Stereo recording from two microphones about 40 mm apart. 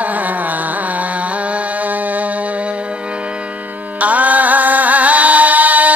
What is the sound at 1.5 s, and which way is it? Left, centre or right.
Mantra, right.